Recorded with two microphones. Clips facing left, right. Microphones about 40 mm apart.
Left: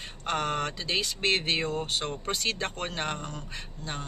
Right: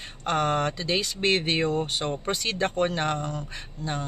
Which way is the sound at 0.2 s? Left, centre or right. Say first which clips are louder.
Right 5 dB; centre.